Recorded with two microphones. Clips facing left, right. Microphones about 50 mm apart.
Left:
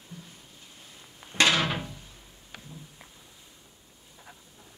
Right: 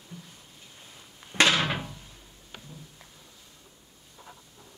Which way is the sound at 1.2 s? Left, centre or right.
Centre.